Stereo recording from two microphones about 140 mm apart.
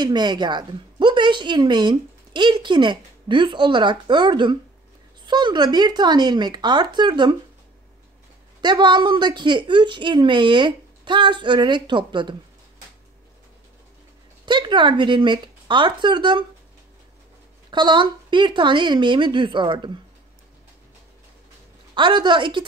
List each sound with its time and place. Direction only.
0.0 s a woman's voice: 30° right (ahead or behind)
8.5 s a woman's voice: 30° right (ahead or behind)
14.4 s a woman's voice: 35° right (ahead or behind)
17.6 s a woman's voice: 35° right (ahead or behind)
21.9 s a woman's voice: 35° right (ahead or behind)